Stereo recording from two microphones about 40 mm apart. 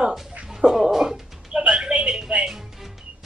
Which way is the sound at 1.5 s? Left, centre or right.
Centre.